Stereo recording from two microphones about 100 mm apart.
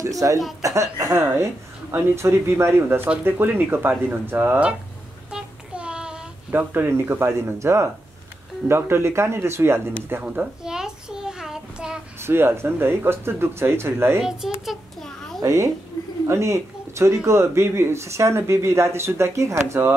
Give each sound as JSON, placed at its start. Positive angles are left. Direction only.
{"t": 0.0, "sound": "speech", "side_deg": -35}
{"t": 5.3, "sound": "child singing", "side_deg": -10}
{"t": 6.5, "sound": "speech", "side_deg": -20}
{"t": 10.0, "sound": "a sound", "side_deg": -20}
{"t": 12.2, "sound": "speech", "side_deg": -25}
{"t": 14.2, "sound": "a sound", "side_deg": -5}
{"t": 15.4, "sound": "speech", "side_deg": -30}